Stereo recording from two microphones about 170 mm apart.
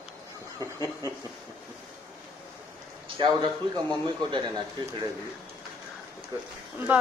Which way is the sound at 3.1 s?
25° right (ahead or behind).